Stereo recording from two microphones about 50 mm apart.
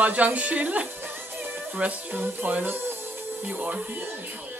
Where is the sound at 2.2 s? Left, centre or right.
Right.